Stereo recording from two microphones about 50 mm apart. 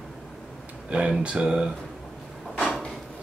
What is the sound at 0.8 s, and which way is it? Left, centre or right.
Speech, right.